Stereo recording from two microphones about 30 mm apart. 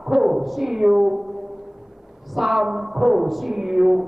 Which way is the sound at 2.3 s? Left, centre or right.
Centre.